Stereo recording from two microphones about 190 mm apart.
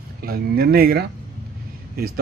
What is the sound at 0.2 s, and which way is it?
Speech, 55° right (ahead or behind).